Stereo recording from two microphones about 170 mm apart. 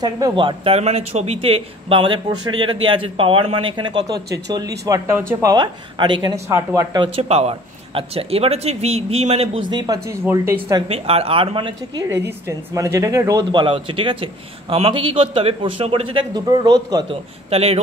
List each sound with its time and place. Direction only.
0.0 s speech: 25° right (ahead or behind)
6.3 s speech: 15° right (ahead or behind); by 9.6 s 40° right (ahead or behind)
9.7 s speech: 25° right (ahead or behind)
10.9 s speech: 35° right (ahead or behind)
12.3 s speech: 15° right (ahead or behind)
17.5 s speech: 40° right (ahead or behind)